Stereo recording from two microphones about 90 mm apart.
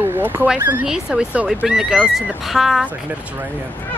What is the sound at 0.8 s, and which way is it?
Speech, 5° right (ahead or behind).